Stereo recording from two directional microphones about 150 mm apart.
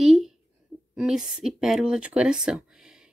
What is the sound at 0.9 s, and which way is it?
Speech, 5° right (ahead or behind).